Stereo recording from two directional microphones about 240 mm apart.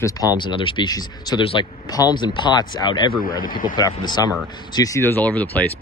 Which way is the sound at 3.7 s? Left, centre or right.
Centre.